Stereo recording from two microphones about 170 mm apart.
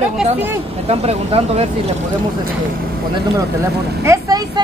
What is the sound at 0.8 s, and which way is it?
Speech, 35° right (ahead or behind).